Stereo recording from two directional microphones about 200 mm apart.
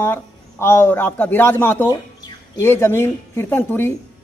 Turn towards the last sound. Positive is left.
turn(degrees=10)  # may be behind; listen again after turning